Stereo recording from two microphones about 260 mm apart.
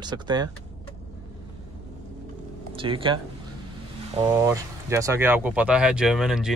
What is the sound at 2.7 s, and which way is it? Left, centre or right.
Speech, centre.